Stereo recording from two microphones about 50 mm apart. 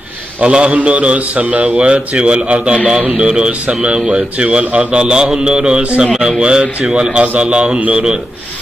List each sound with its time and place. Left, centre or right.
0.4 s a man's voice: right
6.1 s speech: centre
6.4 s a man's voice: centre